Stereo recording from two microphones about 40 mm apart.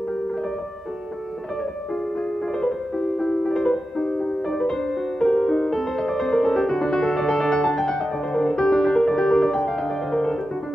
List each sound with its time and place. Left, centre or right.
3.2 s music: centre